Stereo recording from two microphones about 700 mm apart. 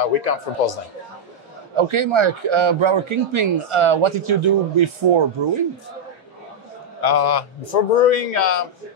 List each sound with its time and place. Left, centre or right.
0.0 s a man's voice: left
1.8 s a man's voice: right
7.0 s a man's voice: left
8.2 s a man's voice: left